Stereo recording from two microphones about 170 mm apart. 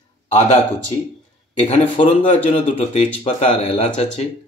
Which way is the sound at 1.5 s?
45° left (ahead or behind).